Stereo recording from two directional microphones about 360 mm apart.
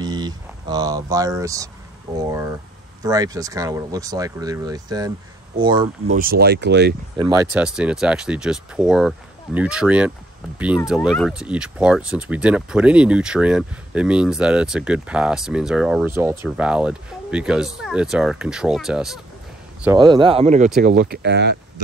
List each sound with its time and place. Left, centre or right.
0.0 s speech: centre
3.0 s speech: centre
6.1 s speech: right
7.2 s speech: centre; by 21.5 s right